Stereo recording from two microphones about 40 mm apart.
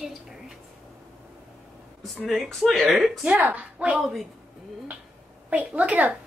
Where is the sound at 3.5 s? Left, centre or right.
Right.